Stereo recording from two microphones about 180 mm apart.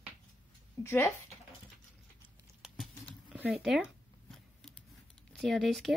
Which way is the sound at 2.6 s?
Centre (ahead or behind).